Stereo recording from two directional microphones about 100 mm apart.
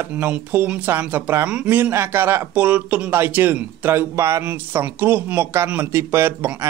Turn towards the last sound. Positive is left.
turn(degrees=-25)  # may be behind; listen again after turning